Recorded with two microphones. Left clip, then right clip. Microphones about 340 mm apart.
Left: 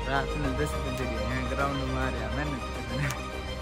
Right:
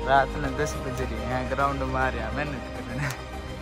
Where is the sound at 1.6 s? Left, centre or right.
Centre.